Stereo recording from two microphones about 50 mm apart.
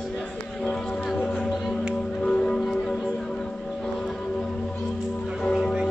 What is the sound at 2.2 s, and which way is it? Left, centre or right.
Music, left.